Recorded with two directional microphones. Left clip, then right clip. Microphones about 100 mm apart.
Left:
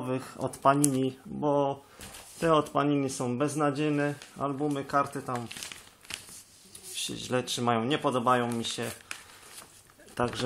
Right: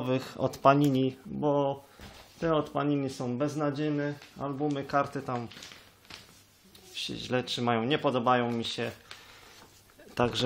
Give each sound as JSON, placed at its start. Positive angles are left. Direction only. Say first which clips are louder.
{"t": 0.5, "sound": "speech", "louder": "right 1 dB", "side_deg": -25}
{"t": 1.0, "sound": "speech", "louder": "even", "side_deg": 0}
{"t": 2.4, "sound": "speech", "louder": "left 3 dB", "side_deg": 20}
{"t": 4.4, "sound": "speech", "louder": "left 3 dB", "side_deg": 25}
{"t": 4.6, "sound": "speech", "louder": "even", "side_deg": 5}
{"t": 7.0, "sound": "speech", "louder": "even", "side_deg": 10}
{"t": 10.1, "sound": "speech", "louder": "right 2 dB", "side_deg": -20}